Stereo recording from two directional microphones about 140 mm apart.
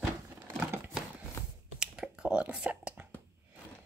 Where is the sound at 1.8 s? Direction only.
5° right (ahead or behind).